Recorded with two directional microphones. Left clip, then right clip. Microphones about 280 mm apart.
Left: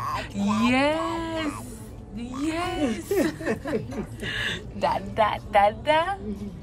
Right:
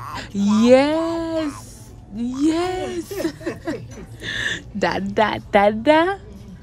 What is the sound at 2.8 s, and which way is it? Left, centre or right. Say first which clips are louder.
Speech: left 1 dB; left.